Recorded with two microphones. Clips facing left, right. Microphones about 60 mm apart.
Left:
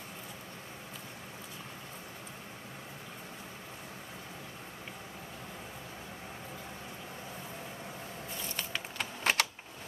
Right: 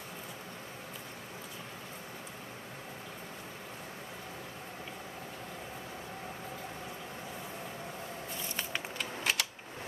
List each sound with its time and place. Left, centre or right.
8.9 s typing: left